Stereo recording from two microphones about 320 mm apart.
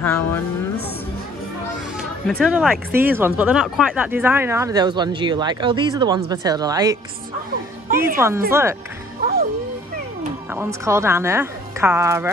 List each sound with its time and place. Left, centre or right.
0.0 s speech: centre
2.0 s speech: centre
8.2 s speech: centre
10.5 s speech: centre